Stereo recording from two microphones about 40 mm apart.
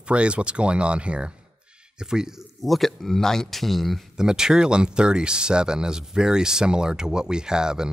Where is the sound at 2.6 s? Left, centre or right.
Centre.